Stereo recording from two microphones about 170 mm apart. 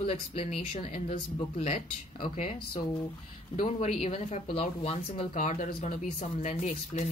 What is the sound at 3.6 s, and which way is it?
Speech, 40° left (ahead or behind).